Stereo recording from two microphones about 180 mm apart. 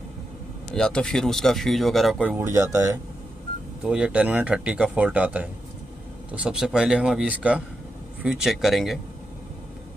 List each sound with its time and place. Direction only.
0.7 s speech: 5° left (ahead or behind)
2.3 s speech: 15° right (ahead or behind)
3.8 s speech: 5° right (ahead or behind)